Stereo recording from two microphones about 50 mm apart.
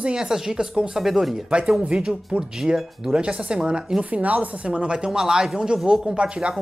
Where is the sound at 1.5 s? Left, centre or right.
Centre.